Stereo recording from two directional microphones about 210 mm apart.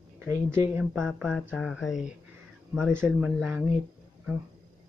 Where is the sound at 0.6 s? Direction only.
10° right (ahead or behind).